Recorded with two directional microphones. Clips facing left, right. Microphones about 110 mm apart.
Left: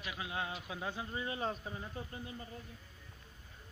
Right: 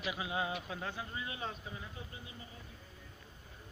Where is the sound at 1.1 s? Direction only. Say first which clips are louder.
Left 4 dB; 35° left (ahead or behind).